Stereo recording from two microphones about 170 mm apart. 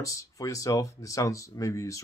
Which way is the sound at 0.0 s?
20° left (ahead or behind).